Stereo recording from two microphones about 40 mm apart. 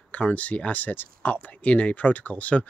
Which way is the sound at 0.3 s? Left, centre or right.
Left.